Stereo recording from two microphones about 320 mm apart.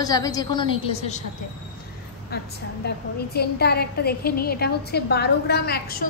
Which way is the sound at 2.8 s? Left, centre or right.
Left.